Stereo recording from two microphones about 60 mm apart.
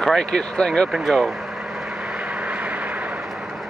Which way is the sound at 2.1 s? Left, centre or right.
Centre.